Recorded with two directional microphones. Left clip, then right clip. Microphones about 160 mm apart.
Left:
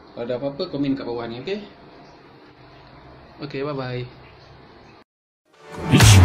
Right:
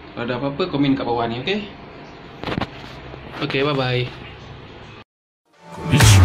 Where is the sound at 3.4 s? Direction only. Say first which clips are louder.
Right 8 dB; 10° left (ahead or behind).